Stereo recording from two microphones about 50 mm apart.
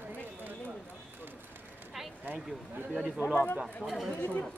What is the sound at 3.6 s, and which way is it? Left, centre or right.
Speech, centre.